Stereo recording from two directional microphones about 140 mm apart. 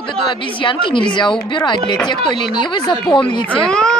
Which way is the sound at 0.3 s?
35° left (ahead or behind).